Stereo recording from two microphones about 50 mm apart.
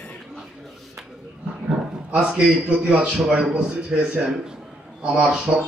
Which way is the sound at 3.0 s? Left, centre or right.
Centre.